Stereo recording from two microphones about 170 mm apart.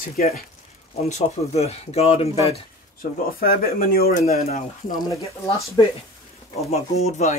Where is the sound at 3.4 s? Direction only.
60° left (ahead or behind).